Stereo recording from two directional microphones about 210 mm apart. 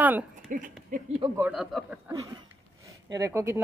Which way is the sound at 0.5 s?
40° right (ahead or behind).